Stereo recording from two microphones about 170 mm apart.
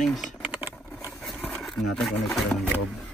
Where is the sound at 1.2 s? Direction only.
5° left (ahead or behind).